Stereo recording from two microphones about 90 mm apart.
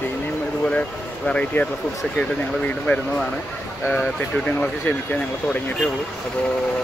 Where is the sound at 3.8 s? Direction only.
10° right (ahead or behind).